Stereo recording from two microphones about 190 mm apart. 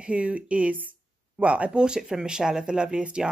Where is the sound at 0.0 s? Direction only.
5° right (ahead or behind).